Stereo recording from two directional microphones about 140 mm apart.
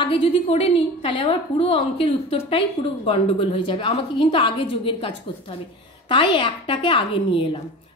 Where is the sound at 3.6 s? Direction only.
35° left (ahead or behind).